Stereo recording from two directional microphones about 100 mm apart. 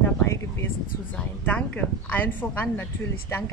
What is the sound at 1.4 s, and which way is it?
A woman's voice, 15° left (ahead or behind).